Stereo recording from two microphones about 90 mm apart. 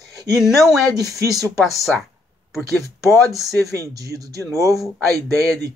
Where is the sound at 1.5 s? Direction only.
Centre (ahead or behind).